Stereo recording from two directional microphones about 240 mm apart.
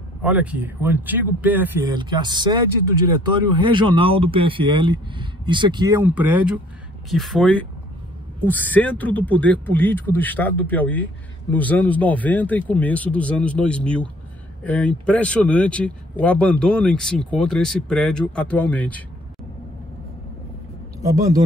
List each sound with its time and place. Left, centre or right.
0.2 s speech: centre
2.0 s speech: centre